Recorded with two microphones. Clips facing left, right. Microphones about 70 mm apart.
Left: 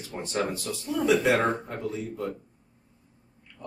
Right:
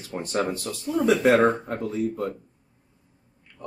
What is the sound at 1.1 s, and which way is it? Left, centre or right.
Speech, right.